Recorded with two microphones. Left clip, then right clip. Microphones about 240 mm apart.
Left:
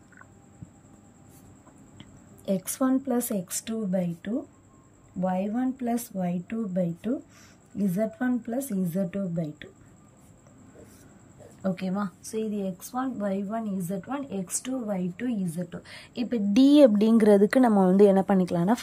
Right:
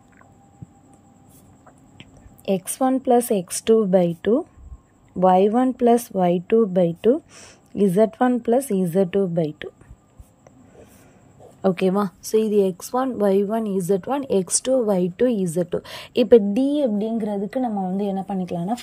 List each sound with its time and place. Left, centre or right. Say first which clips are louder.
2.4 s a woman's voice: right 6 dB; centre
11.6 s a woman's voice: right 11 dB; centre
16.5 s a woman's voice: left 3 dB; centre